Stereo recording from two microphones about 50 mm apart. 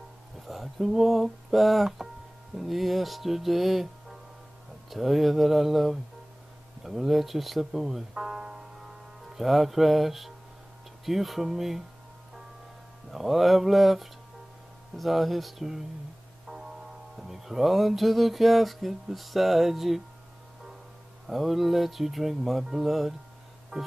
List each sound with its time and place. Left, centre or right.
0.5 s music: centre
6.8 s speech: centre
9.3 s music: centre
13.1 s music: centre
17.2 s music: centre
21.3 s music: centre
23.7 s music: centre